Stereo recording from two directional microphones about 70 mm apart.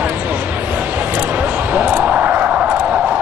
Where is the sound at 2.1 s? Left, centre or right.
Centre.